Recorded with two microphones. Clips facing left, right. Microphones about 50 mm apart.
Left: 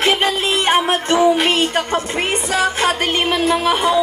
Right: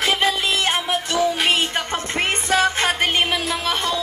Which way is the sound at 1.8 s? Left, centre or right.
Left.